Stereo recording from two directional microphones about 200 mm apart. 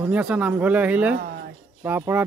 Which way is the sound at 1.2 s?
50° right (ahead or behind).